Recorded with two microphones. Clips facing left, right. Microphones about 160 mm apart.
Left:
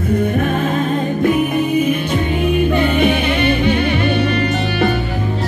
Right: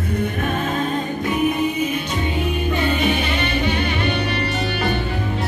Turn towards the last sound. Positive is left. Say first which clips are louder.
# left 6 dB
turn(degrees=50)  # may be behind; listen again after turning